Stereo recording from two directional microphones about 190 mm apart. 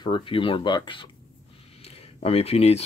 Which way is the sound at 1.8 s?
30° left (ahead or behind).